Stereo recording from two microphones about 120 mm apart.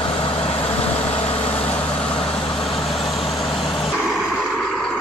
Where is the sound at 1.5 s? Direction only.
10° left (ahead or behind).